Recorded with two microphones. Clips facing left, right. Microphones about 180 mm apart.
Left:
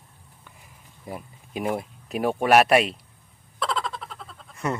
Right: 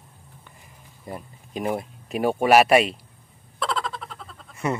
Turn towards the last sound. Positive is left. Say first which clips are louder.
# right 2 dB
turn(degrees=-5)  # may be behind; listen again after turning